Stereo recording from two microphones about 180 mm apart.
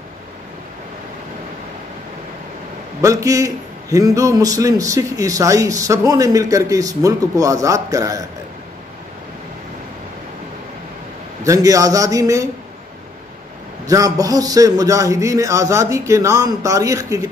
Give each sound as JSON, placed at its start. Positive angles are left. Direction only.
{"t": 3.0, "sound": "a man's voice", "side_deg": -20}
{"t": 11.4, "sound": "a man's voice", "side_deg": -20}
{"t": 13.8, "sound": "a man's voice", "side_deg": -20}